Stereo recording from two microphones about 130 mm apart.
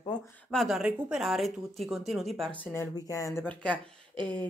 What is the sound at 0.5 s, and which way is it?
A man's voice, centre (ahead or behind).